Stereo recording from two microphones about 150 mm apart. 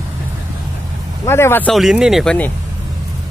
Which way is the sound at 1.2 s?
15° left (ahead or behind).